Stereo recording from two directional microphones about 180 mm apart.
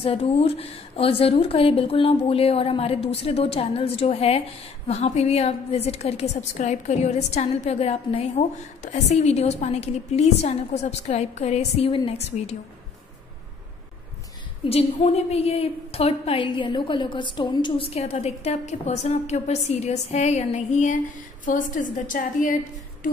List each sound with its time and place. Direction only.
0.0 s a woman's voice: 30° left (ahead or behind)
14.6 s a woman's voice: 35° left (ahead or behind)